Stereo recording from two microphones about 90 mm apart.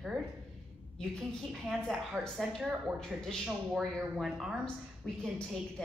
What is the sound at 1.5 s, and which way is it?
A woman's voice, centre (ahead or behind).